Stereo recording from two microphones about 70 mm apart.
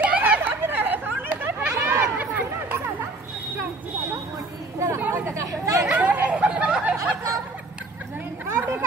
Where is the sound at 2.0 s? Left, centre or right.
Right.